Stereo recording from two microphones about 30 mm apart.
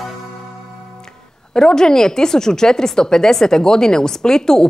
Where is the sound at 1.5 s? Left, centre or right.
Left.